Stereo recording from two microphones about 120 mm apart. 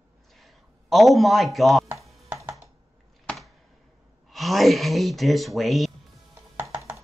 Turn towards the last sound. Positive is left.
turn(degrees=-25)  # may be behind; listen again after turning